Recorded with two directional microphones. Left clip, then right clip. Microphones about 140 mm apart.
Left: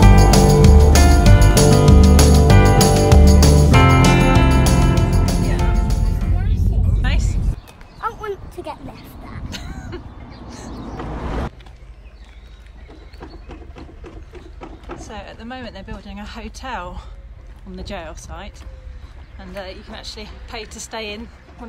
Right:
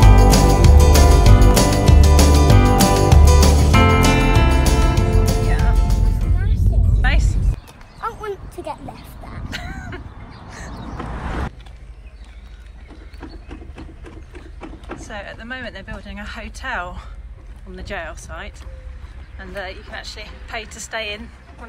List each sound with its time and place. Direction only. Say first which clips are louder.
0.0 s music: left 1 dB; centre (ahead or behind)
7.0 s music: right 5 dB; 15° left (ahead or behind)
7.6 s horse: left 2 dB; centre (ahead or behind)
8.9 s vehicle: even; 25° right (ahead or behind)
9.5 s vehicle: right 3 dB; 20° left (ahead or behind)
15.0 s a sound: right 2 dB; 20° left (ahead or behind)
17.7 s speech: right 2 dB; 30° left (ahead or behind)
19.5 s speech: right 2 dB; 25° left (ahead or behind)